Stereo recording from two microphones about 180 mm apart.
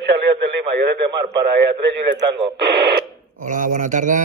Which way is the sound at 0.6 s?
65° right (ahead or behind).